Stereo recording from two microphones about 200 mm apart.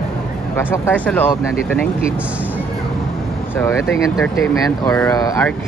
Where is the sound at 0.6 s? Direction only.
10° left (ahead or behind).